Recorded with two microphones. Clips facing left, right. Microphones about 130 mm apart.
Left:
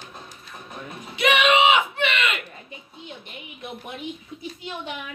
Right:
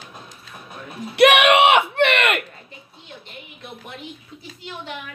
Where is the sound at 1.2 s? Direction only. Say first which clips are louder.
Right 5 dB; 70° right (ahead or behind).